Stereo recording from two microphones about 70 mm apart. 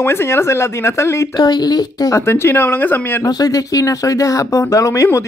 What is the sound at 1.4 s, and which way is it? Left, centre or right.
Speech, left.